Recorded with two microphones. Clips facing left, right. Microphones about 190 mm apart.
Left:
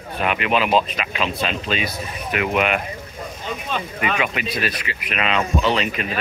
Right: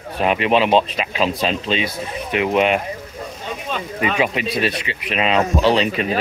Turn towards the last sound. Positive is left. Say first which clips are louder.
# right 5 dB
turn(degrees=-30)  # may be behind; listen again after turning